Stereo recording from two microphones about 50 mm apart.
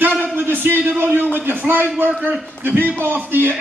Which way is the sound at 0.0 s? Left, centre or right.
Right.